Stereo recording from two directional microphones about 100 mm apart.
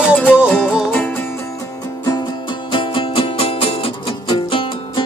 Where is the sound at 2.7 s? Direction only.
60° left (ahead or behind).